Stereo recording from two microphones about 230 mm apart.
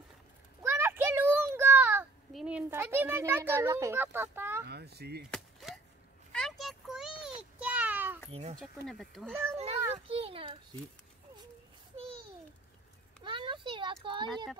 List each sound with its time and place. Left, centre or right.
0.6 s a sound: centre
4.6 s speech: right
5.3 s a sound: centre
8.3 s speech: right
8.8 s speech: centre
9.8 s children playing: centre
10.0 s speech: right
13.2 s speech: right